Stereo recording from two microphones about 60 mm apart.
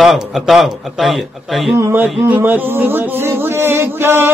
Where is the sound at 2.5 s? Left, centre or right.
Right.